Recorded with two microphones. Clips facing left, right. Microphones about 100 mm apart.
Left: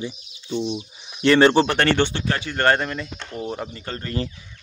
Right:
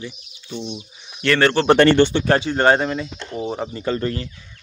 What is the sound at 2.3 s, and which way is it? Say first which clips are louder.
Speech: right 2 dB; 20° right (ahead or behind).